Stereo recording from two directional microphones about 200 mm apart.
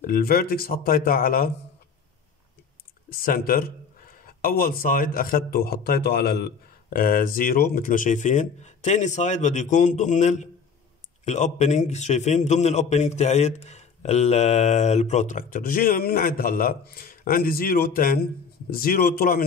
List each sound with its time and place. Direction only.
0.0 s speech: 45° left (ahead or behind)
3.1 s a man's voice: 50° left (ahead or behind)